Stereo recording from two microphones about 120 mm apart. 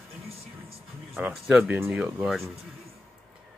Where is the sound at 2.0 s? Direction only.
Centre (ahead or behind).